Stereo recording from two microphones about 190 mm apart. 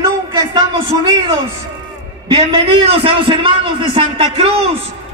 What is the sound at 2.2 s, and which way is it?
A man's voice, 30° right (ahead or behind).